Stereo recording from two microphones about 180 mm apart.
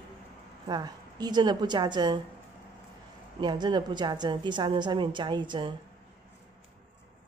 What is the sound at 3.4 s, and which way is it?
Speech, 25° right (ahead or behind).